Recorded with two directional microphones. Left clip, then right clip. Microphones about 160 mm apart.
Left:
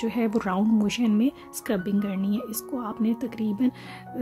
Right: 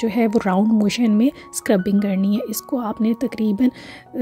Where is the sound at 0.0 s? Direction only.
30° right (ahead or behind).